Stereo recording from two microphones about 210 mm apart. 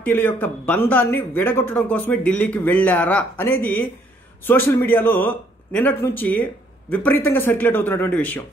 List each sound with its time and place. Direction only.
0.0 s a man's voice: 10° left (ahead or behind)